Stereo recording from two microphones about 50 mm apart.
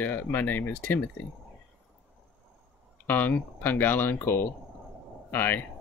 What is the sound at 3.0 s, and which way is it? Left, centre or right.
Speech, left.